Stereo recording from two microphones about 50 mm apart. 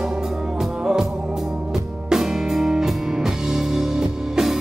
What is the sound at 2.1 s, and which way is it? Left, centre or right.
Music, centre.